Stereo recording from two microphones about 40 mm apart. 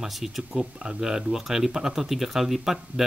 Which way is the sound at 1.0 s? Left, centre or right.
Centre.